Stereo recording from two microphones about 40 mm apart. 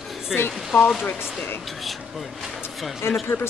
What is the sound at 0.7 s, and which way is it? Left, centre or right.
Speech, left.